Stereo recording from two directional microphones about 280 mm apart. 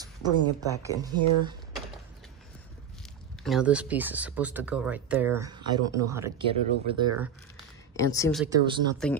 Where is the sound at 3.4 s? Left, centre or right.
Centre.